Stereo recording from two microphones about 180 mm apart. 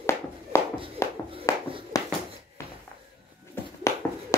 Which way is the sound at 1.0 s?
15° left (ahead or behind).